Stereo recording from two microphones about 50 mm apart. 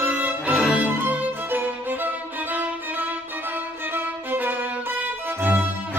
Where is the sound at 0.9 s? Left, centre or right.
Right.